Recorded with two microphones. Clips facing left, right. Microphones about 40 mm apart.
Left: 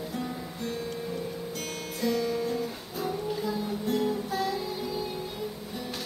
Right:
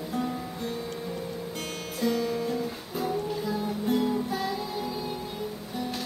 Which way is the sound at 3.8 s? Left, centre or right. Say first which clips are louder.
Right 2 dB; centre.